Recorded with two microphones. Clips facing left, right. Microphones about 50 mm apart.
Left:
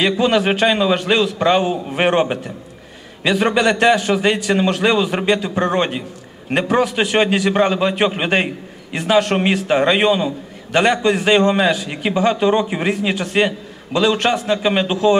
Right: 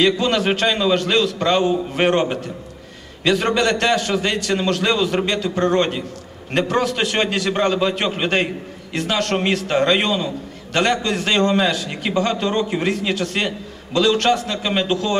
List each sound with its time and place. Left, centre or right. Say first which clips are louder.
0.0 s a man's voice: left 2 dB; centre